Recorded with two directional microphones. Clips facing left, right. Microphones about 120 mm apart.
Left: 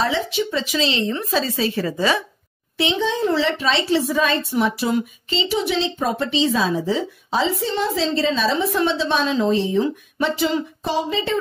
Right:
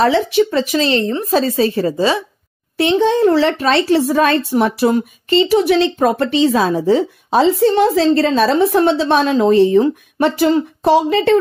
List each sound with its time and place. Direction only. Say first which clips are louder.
0.0 s a woman's voice: right 8 dB; 60° right (ahead or behind); by 2.2 s 30° right (ahead or behind)
2.8 s a woman's voice: right 8 dB; 50° right (ahead or behind)